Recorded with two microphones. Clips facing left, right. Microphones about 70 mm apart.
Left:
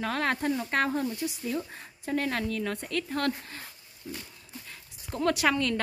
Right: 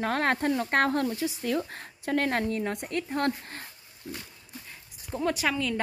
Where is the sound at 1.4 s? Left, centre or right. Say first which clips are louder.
Right 3 dB; right.